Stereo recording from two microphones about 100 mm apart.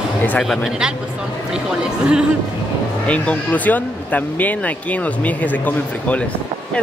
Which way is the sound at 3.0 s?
15° left (ahead or behind).